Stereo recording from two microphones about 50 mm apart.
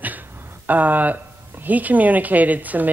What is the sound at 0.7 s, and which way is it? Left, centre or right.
Speech, right.